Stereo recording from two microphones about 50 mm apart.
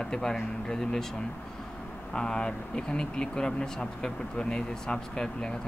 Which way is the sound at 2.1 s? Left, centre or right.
Centre.